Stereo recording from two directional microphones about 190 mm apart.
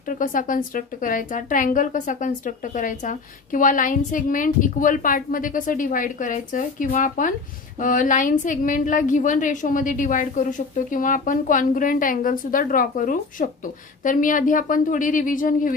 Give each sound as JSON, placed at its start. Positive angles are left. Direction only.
{"t": 0.1, "sound": "speech", "side_deg": 45}